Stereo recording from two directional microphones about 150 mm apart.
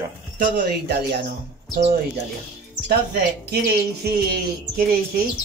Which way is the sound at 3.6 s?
90° right.